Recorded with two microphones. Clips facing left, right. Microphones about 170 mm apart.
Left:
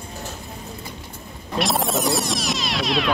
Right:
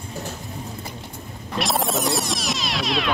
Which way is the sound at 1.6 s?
Centre (ahead or behind).